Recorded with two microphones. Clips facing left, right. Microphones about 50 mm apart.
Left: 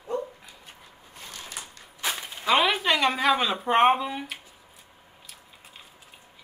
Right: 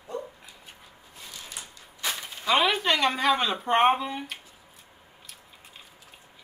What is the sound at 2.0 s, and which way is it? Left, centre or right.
Speech, centre.